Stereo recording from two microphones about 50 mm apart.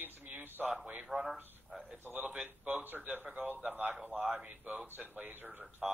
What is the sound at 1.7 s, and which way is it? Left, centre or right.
Speech, centre.